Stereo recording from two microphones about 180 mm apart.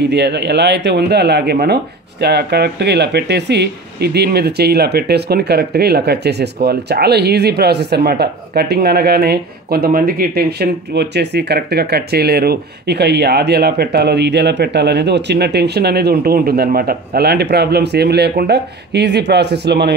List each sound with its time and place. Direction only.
0.0 s speech: 70° right (ahead or behind)